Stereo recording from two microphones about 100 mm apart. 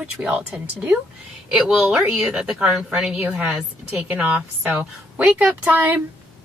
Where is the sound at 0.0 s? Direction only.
10° right (ahead or behind).